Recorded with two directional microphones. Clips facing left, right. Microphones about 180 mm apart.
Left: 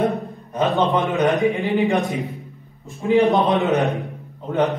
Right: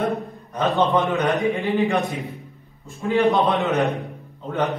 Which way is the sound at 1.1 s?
15° left (ahead or behind).